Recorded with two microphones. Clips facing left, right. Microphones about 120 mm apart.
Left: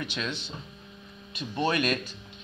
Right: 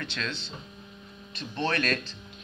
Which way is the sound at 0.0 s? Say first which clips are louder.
Left 1 dB; 10° left (ahead or behind).